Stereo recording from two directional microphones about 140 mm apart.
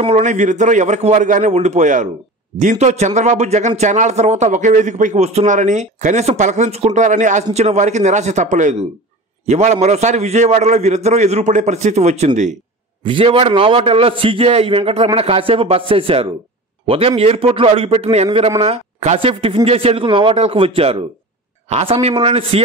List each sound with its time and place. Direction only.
0.0 s a man's voice: 55° right (ahead or behind)
13.0 s a man's voice: 40° right (ahead or behind)